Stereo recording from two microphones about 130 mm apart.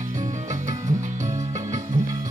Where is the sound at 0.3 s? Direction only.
70° right (ahead or behind).